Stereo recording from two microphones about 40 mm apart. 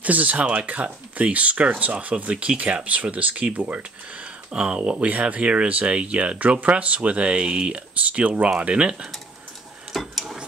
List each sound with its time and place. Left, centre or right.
0.0 s speech: right
4.5 s speech: right
4.9 s speech: right
5.2 s speech: right
9.9 s a sound: centre